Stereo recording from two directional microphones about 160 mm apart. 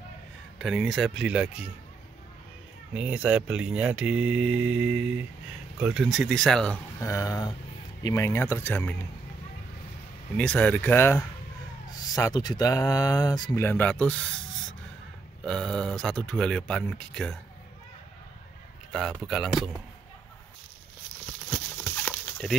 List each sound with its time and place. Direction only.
0.6 s speech: centre (ahead or behind)
2.9 s speech: 5° right (ahead or behind)
7.0 s speech: 20° left (ahead or behind)
10.3 s speech: 10° left (ahead or behind)
15.4 s speech: 5° left (ahead or behind)
18.9 s speech: centre (ahead or behind)
21.5 s a sound: 10° left (ahead or behind)